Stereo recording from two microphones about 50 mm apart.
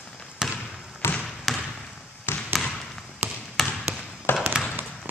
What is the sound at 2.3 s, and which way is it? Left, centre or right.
Trickle, left.